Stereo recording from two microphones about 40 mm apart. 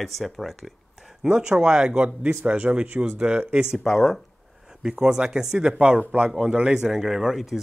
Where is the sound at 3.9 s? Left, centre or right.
Centre.